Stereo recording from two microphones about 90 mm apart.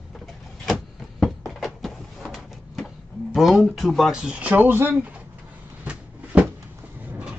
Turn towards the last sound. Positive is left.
turn(degrees=-15)  # may be behind; listen again after turning